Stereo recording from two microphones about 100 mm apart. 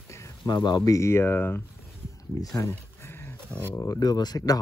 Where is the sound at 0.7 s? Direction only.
35° left (ahead or behind).